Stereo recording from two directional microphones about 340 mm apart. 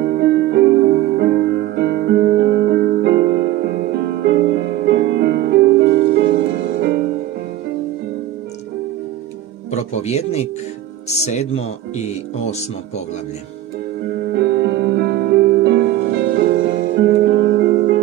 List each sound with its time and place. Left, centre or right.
0.0 s music: right
9.7 s music: centre
11.1 s speech: centre
14.0 s music: right